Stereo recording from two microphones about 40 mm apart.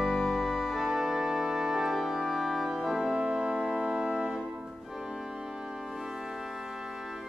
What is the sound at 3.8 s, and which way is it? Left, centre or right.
Music, right.